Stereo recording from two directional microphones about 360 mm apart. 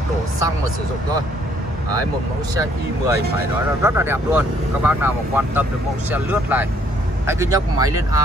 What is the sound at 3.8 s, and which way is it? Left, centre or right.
Speech, centre.